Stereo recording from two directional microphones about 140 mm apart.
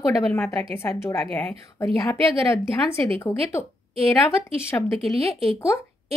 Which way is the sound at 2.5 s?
20° left (ahead or behind).